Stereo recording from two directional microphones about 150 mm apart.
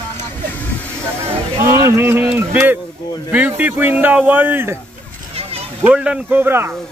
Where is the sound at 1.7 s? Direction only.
20° right (ahead or behind).